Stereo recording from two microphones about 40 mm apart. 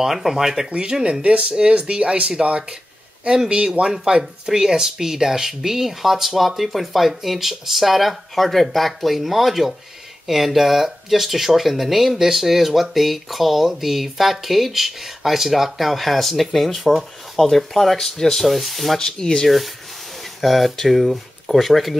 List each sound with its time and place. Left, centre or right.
0.0 s speech: centre
0.7 s speech: right
0.9 s speech: centre
1.2 s speech: right
3.4 s speech: right; by 18.9 s centre
18.9 s speech: centre
20.3 s speech: centre